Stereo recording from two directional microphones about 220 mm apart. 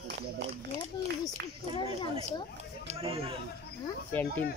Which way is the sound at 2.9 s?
25° right (ahead or behind).